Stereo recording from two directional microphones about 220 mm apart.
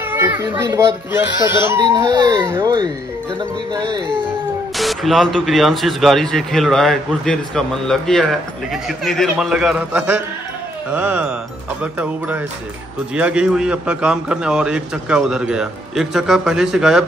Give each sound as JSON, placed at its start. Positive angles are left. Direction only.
{"t": 0.1, "sound": "speech", "side_deg": -10}
{"t": 3.7, "sound": "music", "side_deg": -20}
{"t": 4.7, "sound": "a man's voice", "side_deg": 0}